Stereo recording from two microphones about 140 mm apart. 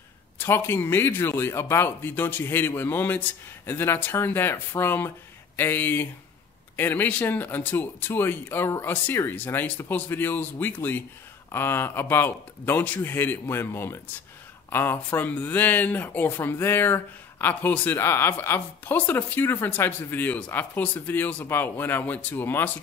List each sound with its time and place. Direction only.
0.4 s speech: 15° left (ahead or behind)